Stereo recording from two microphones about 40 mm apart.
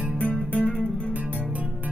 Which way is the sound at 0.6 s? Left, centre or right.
Left.